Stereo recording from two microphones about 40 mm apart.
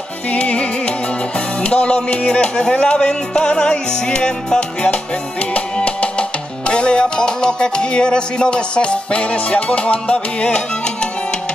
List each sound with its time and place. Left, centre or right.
0.3 s music: left
5.5 s music: left